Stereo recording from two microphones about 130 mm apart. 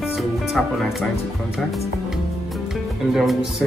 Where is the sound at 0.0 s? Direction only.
5° right (ahead or behind).